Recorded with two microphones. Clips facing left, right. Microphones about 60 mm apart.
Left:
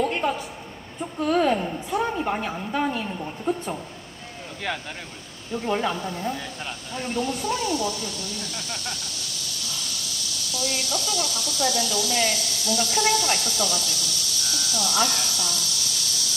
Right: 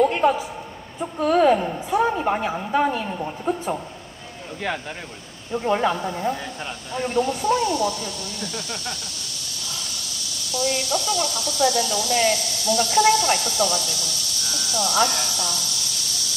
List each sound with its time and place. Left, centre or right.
1.2 s a woman's voice: centre
2.9 s a woman's voice: centre
5.6 s speech: centre
10.5 s speech: centre